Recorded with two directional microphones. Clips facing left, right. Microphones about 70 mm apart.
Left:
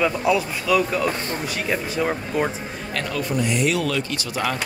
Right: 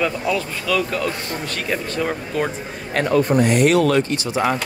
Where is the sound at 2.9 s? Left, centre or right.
Right.